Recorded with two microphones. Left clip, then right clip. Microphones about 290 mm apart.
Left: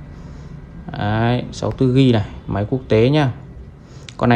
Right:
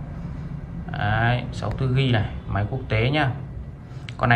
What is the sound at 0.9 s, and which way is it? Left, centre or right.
Speech, centre.